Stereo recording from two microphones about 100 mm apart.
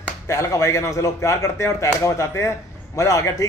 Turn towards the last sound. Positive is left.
turn(degrees=30)  # may be behind; listen again after turning